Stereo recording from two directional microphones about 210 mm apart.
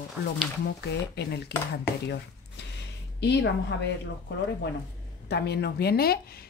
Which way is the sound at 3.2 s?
55° left (ahead or behind).